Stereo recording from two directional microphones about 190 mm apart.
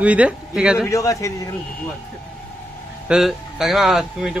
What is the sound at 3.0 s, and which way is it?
A man's voice, 5° right (ahead or behind).